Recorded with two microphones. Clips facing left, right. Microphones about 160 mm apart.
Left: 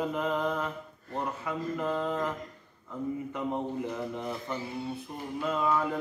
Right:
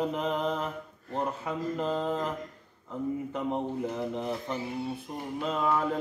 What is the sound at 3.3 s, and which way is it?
Mantra, 20° right (ahead or behind).